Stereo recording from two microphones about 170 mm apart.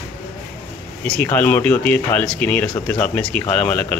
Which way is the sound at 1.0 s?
10° left (ahead or behind).